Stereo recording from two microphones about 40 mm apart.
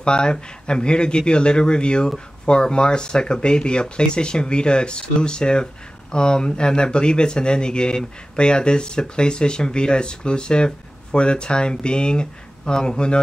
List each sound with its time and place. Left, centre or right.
0.0 s speech: left